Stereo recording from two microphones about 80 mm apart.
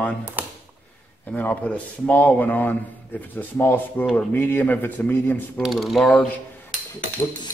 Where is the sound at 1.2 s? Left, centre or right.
Centre.